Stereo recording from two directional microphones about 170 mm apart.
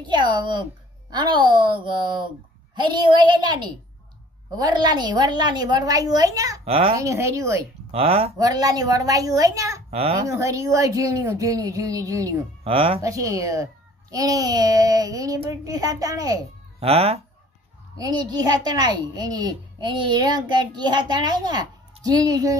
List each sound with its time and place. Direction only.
0.0 s a child's voice: 25° right (ahead or behind)
6.6 s speech: 35° right (ahead or behind)
7.0 s speech: 15° right (ahead or behind)
7.9 s speech: 35° right (ahead or behind)
8.4 s a child's voice: 20° right (ahead or behind)
9.8 s a child's voice: 35° right (ahead or behind)
10.2 s a child's voice: 20° right (ahead or behind)
12.6 s speech: 35° right (ahead or behind)
13.0 s a child's voice: 20° right (ahead or behind)
16.8 s speech: 35° right (ahead or behind)
17.9 s a child's voice: 20° right (ahead or behind)